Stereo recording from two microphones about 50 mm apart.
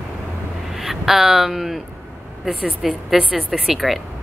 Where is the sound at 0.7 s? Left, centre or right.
Centre.